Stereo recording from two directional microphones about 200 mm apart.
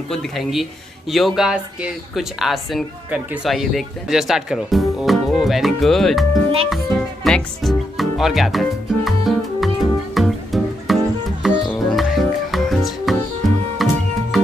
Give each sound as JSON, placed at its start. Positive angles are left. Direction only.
{"t": 0.1, "sound": "a woman's voice", "side_deg": 0}
{"t": 6.7, "sound": "music", "side_deg": 0}